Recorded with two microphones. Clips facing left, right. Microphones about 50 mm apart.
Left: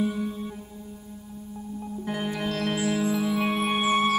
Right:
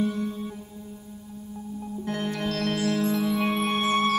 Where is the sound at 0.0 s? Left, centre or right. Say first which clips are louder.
Even; centre.